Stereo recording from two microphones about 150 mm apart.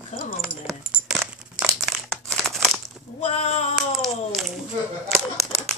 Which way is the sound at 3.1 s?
40° left (ahead or behind).